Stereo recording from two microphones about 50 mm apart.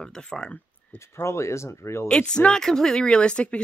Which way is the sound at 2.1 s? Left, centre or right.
Centre.